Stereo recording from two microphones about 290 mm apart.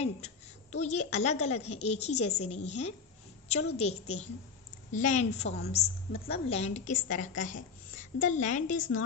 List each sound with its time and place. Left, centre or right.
0.0 s a woman's voice: left